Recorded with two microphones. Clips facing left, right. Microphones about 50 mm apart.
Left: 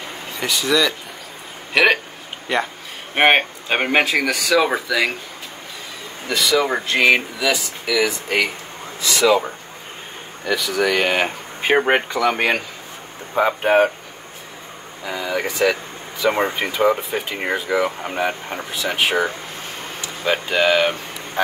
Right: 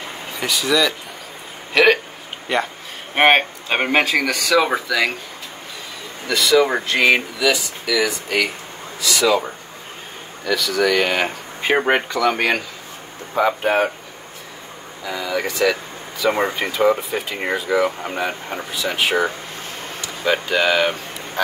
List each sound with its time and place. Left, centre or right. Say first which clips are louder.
0.0 s a sound: even; centre
1.7 s speech: right 1 dB; centre
6.5 s speech: right 3 dB; centre
7.3 s speech: right 2 dB; left
10.4 s speech: right 1 dB; centre
15.0 s speech: even; centre
16.3 s speech: even; centre